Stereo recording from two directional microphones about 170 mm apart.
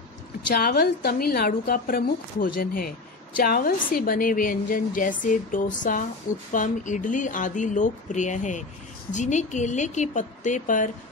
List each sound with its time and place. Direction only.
0.6 s a woman's voice: 65° left (ahead or behind); by 10.9 s 45° left (ahead or behind)